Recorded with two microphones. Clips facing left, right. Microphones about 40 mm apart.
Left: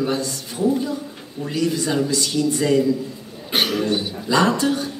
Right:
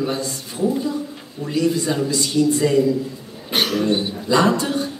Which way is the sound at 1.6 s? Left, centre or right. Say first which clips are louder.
Right 1 dB; right.